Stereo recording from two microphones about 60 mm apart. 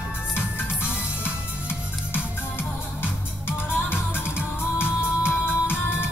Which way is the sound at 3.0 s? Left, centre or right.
Left.